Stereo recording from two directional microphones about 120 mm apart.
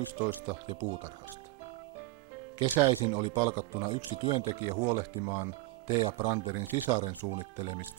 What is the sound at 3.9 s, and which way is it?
Speech, 35° right (ahead or behind).